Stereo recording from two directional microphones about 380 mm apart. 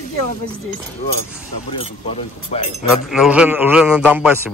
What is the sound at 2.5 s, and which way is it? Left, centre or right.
Speech, centre.